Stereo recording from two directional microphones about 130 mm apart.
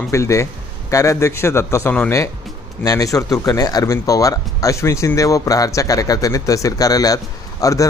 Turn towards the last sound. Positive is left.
turn(degrees=25)  # may be behind; listen again after turning